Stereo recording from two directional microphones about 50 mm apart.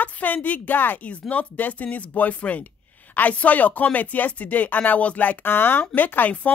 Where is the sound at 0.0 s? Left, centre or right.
Left.